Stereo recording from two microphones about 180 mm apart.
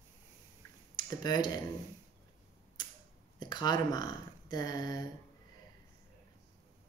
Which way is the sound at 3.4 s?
25° left (ahead or behind).